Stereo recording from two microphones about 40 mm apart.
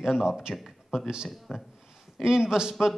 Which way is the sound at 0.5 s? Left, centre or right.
Centre.